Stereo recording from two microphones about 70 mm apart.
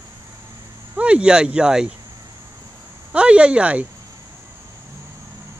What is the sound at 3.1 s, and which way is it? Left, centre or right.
Speech, centre.